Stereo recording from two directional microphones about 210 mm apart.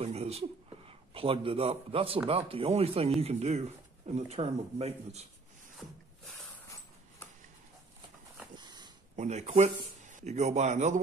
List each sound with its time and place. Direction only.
0.0 s speech: 30° right (ahead or behind)
8.5 s dog: 20° right (ahead or behind)
9.1 s speech: 35° right (ahead or behind)